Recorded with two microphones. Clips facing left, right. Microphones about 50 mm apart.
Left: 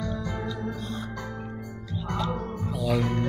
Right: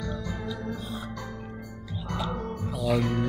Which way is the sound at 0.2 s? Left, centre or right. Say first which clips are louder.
Left 3 dB; left.